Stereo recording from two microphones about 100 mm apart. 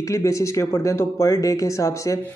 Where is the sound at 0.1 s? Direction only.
30° left (ahead or behind).